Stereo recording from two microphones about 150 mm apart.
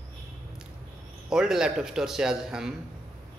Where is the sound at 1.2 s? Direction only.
5° right (ahead or behind).